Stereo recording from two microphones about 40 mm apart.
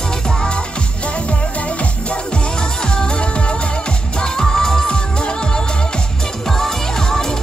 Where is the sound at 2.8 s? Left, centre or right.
Left.